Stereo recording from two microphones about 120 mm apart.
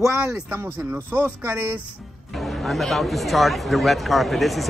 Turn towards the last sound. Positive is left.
turn(degrees=0)  # may be behind; listen again after turning